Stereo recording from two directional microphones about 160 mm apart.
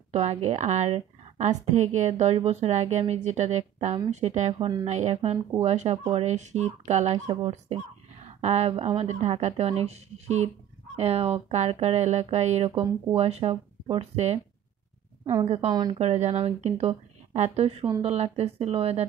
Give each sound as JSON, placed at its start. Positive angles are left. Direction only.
{"t": 0.1, "sound": "a woman's voice", "side_deg": -45}
{"t": 15.4, "sound": "speech", "side_deg": -40}
{"t": 15.7, "sound": "speech", "side_deg": -25}
{"t": 16.0, "sound": "speech", "side_deg": -40}